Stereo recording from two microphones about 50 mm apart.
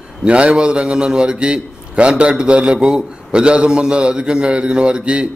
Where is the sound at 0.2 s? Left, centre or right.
Right.